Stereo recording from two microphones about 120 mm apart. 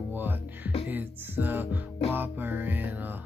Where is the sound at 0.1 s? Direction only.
15° right (ahead or behind).